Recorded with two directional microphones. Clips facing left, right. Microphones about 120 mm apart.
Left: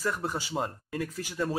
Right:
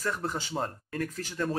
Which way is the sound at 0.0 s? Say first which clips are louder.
Left 1 dB; 10° left (ahead or behind).